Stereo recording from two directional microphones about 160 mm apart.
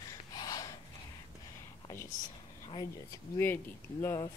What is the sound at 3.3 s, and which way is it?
Speech, 15° left (ahead or behind).